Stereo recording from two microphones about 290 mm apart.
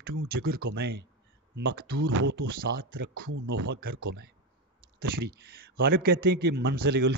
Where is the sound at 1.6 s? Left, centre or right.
Right.